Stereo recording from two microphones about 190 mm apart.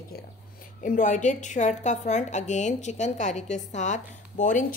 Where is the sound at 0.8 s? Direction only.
40° left (ahead or behind).